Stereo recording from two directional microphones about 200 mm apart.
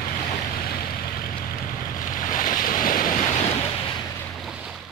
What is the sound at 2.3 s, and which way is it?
Waves, 40° left (ahead or behind).